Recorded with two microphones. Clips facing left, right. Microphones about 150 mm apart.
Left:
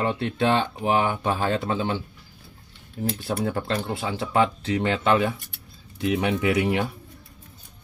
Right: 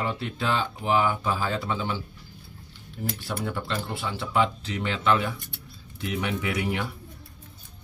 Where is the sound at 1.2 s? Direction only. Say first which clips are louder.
Left 4 dB; 55° left (ahead or behind).